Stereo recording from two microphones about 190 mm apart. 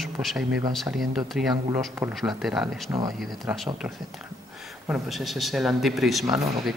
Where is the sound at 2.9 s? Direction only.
20° right (ahead or behind).